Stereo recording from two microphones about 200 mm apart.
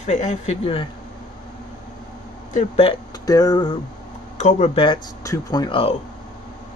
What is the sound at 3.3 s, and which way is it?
Speech, 20° left (ahead or behind).